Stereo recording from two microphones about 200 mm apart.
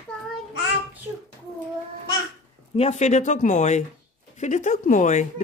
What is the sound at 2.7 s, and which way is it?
Speech, 30° left (ahead or behind).